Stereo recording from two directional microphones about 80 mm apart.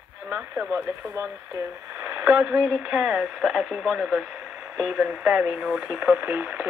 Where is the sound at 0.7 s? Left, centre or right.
Centre.